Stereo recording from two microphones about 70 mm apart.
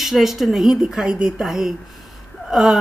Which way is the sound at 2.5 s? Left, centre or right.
Centre.